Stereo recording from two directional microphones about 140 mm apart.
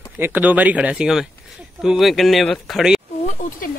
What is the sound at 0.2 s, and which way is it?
Speech, 10° right (ahead or behind).